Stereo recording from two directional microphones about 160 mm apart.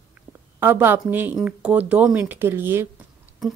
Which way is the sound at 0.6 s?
15° right (ahead or behind).